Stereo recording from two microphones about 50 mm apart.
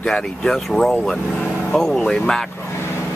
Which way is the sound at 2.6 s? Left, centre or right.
Left.